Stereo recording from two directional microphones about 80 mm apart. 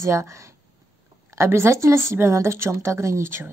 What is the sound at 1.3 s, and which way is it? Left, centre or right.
Speech, right.